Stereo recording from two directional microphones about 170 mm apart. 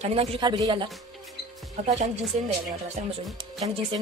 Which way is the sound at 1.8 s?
45° right (ahead or behind).